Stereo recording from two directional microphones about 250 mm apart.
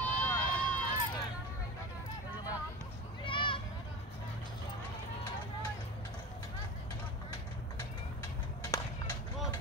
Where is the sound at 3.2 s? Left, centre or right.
Centre.